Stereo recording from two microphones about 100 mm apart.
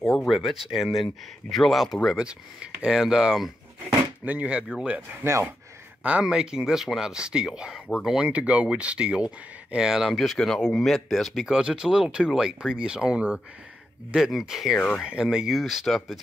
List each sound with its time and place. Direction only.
0.0 s speech: 5° left (ahead or behind)
5.2 s speech: 25° right (ahead or behind)
6.0 s speech: 10° right (ahead or behind)
14.8 s speech: 15° left (ahead or behind)
15.0 s speech: 5° right (ahead or behind)